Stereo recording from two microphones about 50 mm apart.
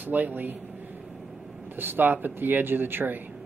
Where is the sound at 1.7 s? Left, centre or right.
Right.